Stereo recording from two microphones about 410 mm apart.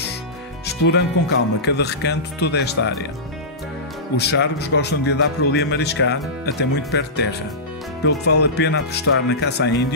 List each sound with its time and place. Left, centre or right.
0.7 s speech: left
4.2 s speech: left